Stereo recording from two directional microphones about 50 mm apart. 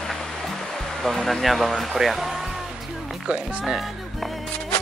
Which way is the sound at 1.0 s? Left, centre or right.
Centre.